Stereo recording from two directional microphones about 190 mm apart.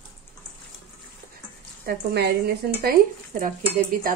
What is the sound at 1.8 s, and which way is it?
A woman's voice, 55° right (ahead or behind).